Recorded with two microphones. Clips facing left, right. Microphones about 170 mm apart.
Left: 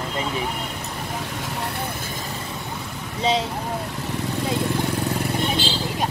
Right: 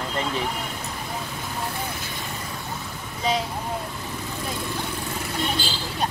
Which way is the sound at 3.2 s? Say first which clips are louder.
Left 3 dB; 30° left (ahead or behind).